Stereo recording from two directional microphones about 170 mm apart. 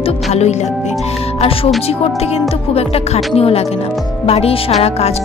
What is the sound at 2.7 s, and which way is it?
A woman's voice, 35° left (ahead or behind).